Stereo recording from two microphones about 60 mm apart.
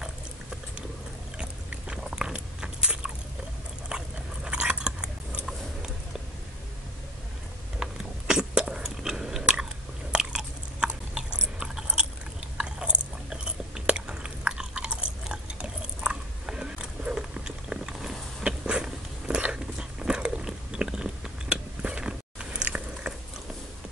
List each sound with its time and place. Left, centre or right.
1.9 s biting: centre
3.9 s dog: centre
4.5 s biting: centre
7.8 s biting: centre
11.6 s a sound: centre
12.5 s biting: centre